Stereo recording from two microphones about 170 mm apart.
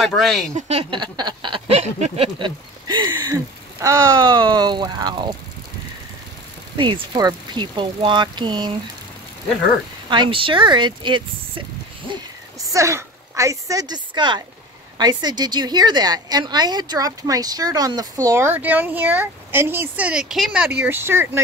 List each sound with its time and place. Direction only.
0.0 s speech: centre (ahead or behind)
0.6 s a woman's voice: 40° right (ahead or behind)
1.8 s a woman's voice: 40° right (ahead or behind); by 5.3 s 25° right (ahead or behind)
6.8 s a woman's voice: 25° right (ahead or behind)
10.0 s a woman's voice: 30° right (ahead or behind)
12.7 s a woman's voice: 15° right (ahead or behind)